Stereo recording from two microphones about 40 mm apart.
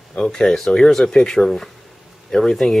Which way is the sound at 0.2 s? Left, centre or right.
Centre.